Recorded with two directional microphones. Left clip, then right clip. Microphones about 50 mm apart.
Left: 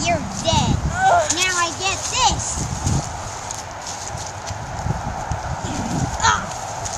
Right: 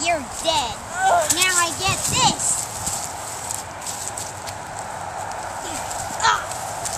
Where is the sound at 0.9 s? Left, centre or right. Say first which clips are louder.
Left 2 dB; left.